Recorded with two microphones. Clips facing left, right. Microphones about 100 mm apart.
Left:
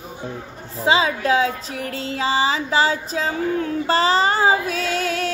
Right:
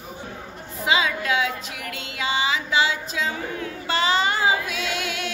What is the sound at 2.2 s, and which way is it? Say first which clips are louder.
Female singing: left 4 dB; 35° left (ahead or behind).